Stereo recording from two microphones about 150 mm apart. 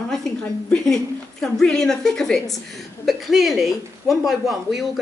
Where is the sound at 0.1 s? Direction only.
5° left (ahead or behind).